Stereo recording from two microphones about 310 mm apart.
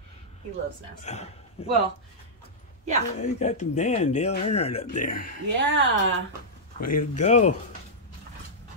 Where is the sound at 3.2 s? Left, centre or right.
Left.